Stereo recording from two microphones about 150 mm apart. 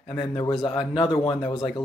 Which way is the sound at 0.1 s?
35° left (ahead or behind).